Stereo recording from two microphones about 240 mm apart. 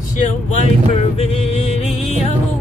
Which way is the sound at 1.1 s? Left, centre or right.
Left.